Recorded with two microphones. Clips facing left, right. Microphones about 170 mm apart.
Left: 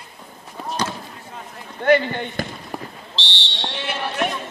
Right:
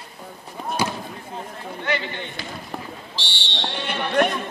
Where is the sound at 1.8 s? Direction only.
50° left (ahead or behind).